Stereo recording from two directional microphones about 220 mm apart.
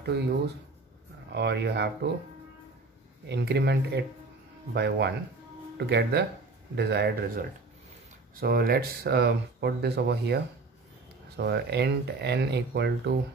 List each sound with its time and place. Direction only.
0.1 s speech: 50° right (ahead or behind)
1.3 s speech: 50° right (ahead or behind)
3.3 s speech: 50° right (ahead or behind)